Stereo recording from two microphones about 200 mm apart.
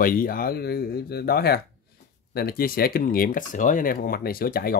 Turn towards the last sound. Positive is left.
turn(degrees=50)  # may be behind; listen again after turning